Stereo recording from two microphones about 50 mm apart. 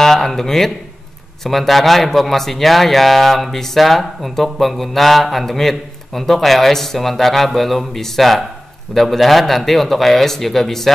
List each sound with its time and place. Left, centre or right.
0.0 s speech: centre